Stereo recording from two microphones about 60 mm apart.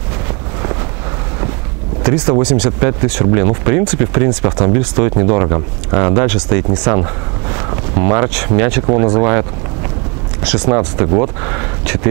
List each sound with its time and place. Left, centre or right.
2.0 s speech: centre